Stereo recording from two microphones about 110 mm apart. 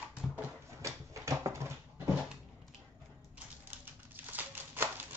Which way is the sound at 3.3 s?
15° right (ahead or behind).